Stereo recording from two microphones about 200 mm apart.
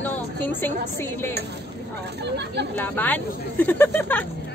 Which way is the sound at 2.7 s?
10° left (ahead or behind).